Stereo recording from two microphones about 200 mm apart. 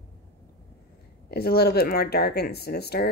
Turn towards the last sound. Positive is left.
turn(degrees=55)  # may be behind; listen again after turning